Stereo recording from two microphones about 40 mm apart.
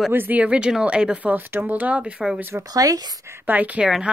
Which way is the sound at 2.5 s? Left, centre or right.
Right.